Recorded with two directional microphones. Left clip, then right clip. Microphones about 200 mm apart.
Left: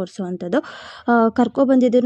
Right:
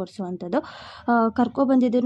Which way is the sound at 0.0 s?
20° left (ahead or behind).